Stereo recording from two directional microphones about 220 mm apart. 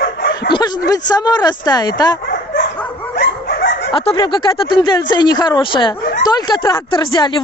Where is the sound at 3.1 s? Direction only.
50° left (ahead or behind).